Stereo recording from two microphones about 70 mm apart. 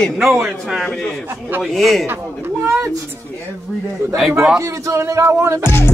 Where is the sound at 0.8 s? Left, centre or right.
Centre.